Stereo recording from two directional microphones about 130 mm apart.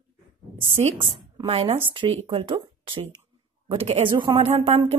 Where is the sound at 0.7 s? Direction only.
50° right (ahead or behind).